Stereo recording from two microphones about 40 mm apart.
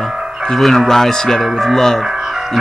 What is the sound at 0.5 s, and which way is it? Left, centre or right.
Speech, centre.